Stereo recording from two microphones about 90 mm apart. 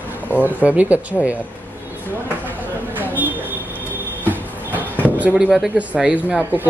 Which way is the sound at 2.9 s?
20° right (ahead or behind).